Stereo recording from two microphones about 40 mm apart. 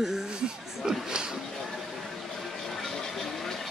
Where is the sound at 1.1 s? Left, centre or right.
Centre.